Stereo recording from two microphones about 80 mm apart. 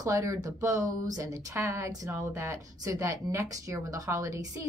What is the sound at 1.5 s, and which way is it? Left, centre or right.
A woman's voice, right.